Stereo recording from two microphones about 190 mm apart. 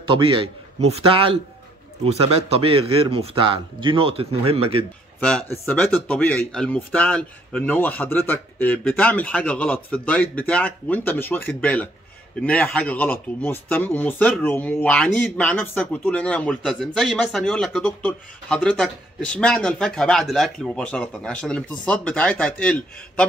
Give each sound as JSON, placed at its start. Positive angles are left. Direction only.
{"t": 0.0, "sound": "a man's voice", "side_deg": -25}
{"t": 5.2, "sound": "speech", "side_deg": 10}